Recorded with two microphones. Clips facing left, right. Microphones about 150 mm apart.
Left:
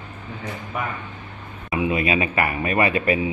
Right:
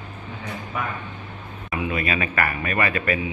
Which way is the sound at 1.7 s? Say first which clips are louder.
Left 4 dB; 20° left (ahead or behind).